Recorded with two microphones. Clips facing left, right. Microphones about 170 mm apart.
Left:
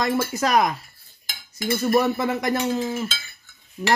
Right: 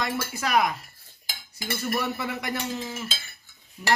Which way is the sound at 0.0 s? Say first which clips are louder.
Left 7 dB; 40° left (ahead or behind).